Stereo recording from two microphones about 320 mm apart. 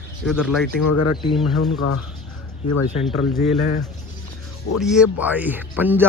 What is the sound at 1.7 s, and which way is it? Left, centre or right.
Speech, left.